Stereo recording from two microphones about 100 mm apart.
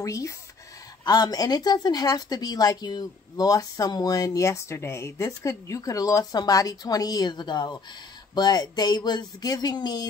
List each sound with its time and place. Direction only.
0.0 s speech: 30° left (ahead or behind)